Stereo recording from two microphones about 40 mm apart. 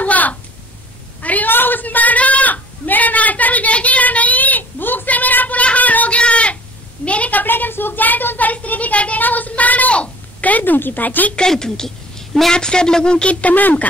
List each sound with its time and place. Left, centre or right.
0.0 s a sound: left
1.5 s a sound: left
5.6 s child singing: left
7.1 s a woman's voice: left
8.5 s a woman's voice: left
10.6 s a woman's voice: left
11.3 s a woman's voice: centre; by 13.8 s left